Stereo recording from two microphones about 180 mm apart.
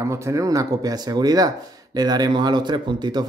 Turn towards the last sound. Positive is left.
turn(degrees=-25)  # may be behind; listen again after turning